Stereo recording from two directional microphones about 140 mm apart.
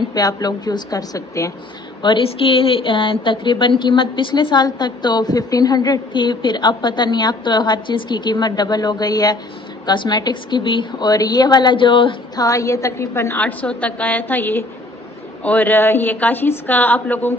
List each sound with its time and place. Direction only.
0.1 s a woman's voice: 25° left (ahead or behind)
2.0 s a woman's voice: 35° left (ahead or behind); by 17.3 s 15° left (ahead or behind)